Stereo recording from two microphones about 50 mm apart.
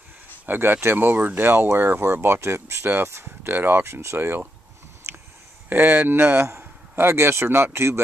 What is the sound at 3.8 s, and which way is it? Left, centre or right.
Speech, right.